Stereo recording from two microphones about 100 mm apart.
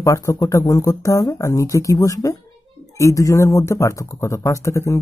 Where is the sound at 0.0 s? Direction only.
30° left (ahead or behind).